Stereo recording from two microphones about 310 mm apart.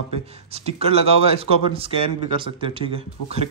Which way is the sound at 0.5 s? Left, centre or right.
Centre.